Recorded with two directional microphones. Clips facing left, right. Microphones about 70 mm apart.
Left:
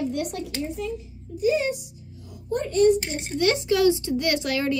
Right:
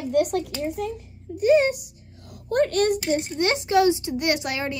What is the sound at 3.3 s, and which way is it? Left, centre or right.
Speech, right.